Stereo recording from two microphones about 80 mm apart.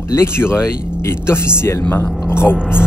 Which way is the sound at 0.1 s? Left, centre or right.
Left.